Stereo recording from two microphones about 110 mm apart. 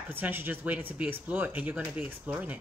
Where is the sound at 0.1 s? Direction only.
20° right (ahead or behind).